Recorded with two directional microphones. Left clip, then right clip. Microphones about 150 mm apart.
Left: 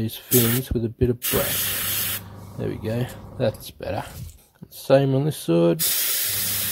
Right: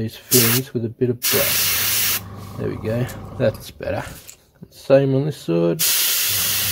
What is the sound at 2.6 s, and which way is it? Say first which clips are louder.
Speech: right 3 dB; 25° left (ahead or behind).